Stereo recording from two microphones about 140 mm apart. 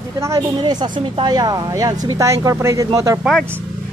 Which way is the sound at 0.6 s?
30° right (ahead or behind).